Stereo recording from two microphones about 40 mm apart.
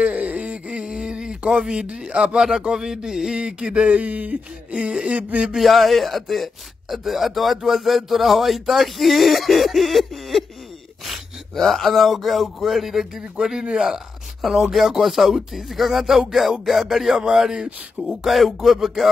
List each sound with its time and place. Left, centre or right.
0.0 s a sound: right
0.8 s a sound: centre
2.6 s speech: centre; by 4.8 s right
4.8 s speech: right
5.6 s speech: centre
11.5 s speech: centre